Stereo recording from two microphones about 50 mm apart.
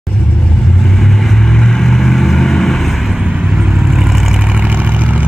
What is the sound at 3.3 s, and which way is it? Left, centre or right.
Vehicle, centre.